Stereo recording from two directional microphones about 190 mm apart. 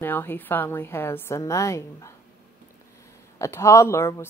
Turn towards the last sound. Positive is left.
turn(degrees=15)  # may be behind; listen again after turning